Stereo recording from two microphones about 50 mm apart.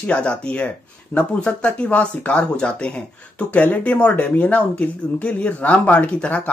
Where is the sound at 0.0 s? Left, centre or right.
Left.